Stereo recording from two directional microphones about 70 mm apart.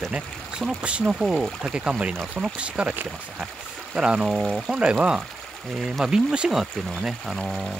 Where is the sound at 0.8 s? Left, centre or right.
Centre.